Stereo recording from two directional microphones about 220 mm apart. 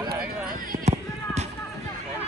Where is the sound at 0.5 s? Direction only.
40° right (ahead or behind).